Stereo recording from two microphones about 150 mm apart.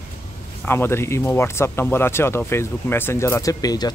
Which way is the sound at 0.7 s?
15° left (ahead or behind).